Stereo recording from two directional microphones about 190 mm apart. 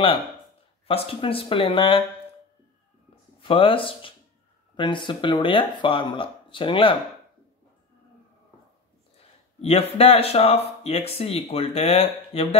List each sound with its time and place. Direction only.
0.8 s speech: 30° left (ahead or behind)
3.3 s speech: 30° left (ahead or behind)
9.6 s speech: 30° left (ahead or behind)